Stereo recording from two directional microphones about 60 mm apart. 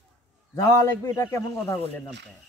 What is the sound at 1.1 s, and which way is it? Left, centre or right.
Speech, left.